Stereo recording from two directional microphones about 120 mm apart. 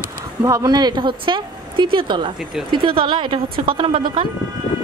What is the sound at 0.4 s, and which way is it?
A woman's voice, 30° right (ahead or behind).